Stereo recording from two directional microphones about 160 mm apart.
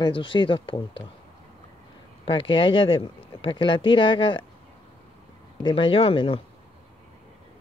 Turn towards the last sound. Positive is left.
turn(degrees=35)  # may be behind; listen again after turning